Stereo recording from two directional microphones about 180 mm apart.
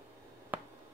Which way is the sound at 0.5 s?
10° right (ahead or behind).